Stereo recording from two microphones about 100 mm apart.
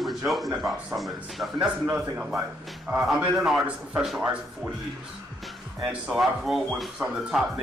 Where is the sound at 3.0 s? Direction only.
Centre (ahead or behind).